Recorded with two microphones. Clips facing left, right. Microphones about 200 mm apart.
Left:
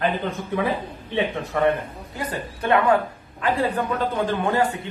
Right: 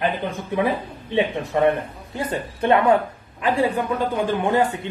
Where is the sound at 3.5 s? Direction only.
10° right (ahead or behind).